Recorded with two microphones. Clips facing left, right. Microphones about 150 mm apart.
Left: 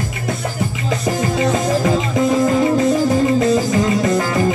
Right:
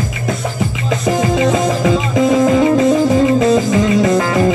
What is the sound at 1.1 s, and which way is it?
Music, 90° right.